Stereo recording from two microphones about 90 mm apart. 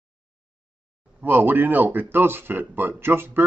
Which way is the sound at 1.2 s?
20° right (ahead or behind).